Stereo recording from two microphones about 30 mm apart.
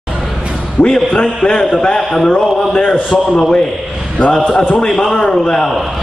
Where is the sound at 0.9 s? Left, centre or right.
Centre.